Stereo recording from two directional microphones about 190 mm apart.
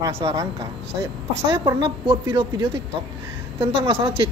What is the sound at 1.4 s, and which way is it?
A woman's voice, 25° right (ahead or behind).